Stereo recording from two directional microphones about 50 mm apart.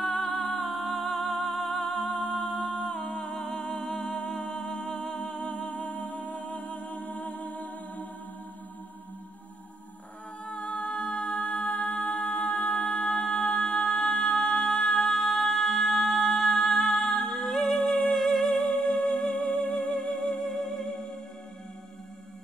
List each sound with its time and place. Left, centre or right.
0.6 s music: centre
1.9 s humming: left
3.7 s music: centre
5.2 s music: left
10.4 s music: left; by 20.9 s centre